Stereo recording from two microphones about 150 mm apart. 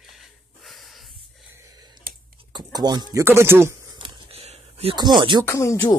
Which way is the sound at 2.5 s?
25° right (ahead or behind).